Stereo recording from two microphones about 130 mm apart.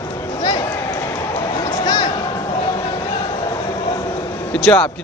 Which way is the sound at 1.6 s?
35° left (ahead or behind).